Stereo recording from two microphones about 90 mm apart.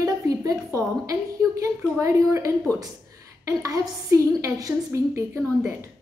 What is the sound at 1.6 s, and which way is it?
A woman's voice, 35° right (ahead or behind).